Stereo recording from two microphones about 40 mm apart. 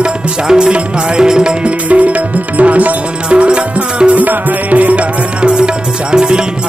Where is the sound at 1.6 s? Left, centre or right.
Right.